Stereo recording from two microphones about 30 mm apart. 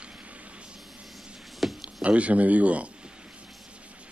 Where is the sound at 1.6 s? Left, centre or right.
Centre.